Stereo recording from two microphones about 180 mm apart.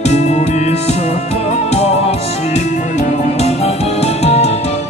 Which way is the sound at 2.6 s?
40° left (ahead or behind).